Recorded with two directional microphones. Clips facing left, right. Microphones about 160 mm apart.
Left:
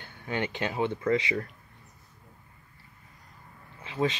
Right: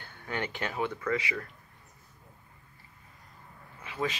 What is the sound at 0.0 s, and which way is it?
Speech, 20° left (ahead or behind).